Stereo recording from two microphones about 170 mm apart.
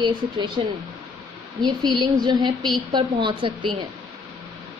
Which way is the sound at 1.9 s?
25° right (ahead or behind).